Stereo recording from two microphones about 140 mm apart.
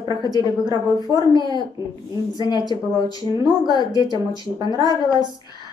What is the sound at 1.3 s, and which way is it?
Speech, 30° right (ahead or behind).